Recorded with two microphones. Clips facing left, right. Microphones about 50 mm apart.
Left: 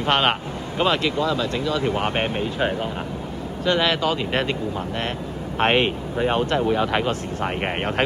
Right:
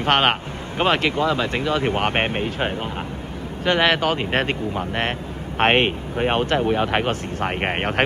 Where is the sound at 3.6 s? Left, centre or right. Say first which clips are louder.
Right 2 dB; right.